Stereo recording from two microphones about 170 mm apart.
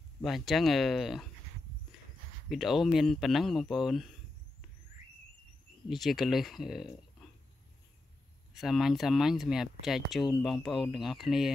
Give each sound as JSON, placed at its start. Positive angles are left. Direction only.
{"t": 0.2, "sound": "speech", "side_deg": 0}
{"t": 2.5, "sound": "speech", "side_deg": 0}
{"t": 5.9, "sound": "speech", "side_deg": 0}
{"t": 8.5, "sound": "speech", "side_deg": 0}